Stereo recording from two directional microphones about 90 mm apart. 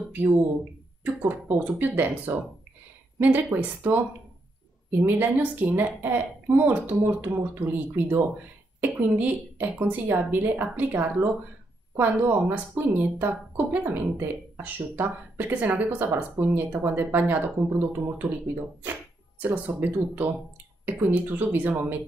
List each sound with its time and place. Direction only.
0.1 s speech: 20° right (ahead or behind)
5.0 s speech: 20° right (ahead or behind)